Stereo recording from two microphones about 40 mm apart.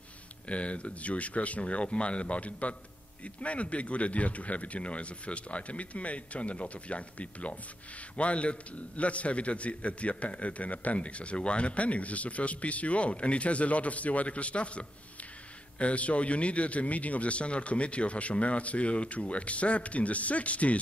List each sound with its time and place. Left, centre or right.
0.5 s a man's voice: left